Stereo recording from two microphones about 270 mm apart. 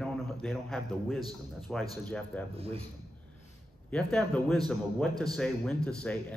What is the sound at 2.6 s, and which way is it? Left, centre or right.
Speech, right.